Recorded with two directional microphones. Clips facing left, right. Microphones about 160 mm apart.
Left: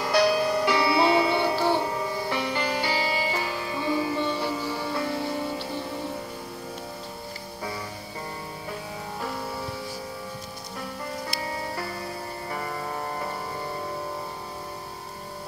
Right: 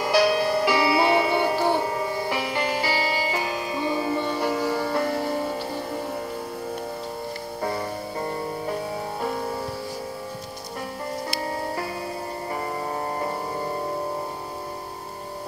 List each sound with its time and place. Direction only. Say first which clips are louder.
0.0 s music: right 2 dB; 5° right (ahead or behind)
1.1 s music: right 1 dB; 15° right (ahead or behind)
4.3 s music: right 4 dB; 55° right (ahead or behind)
7.6 s music: right 7 dB; 50° right (ahead or behind)